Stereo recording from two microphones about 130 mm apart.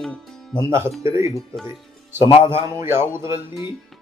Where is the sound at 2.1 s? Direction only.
20° right (ahead or behind).